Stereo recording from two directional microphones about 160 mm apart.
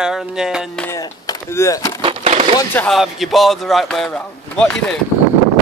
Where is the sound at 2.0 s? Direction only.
35° right (ahead or behind).